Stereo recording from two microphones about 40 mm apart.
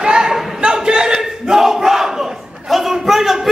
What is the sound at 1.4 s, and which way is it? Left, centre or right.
Battle cry, centre.